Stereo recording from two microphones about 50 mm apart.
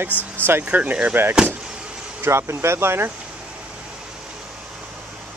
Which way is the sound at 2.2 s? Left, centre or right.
Right.